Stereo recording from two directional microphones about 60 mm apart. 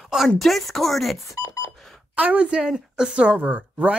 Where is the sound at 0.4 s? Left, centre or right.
Centre.